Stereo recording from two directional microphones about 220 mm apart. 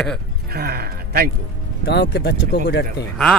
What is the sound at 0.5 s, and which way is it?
Speech, 45° right (ahead or behind).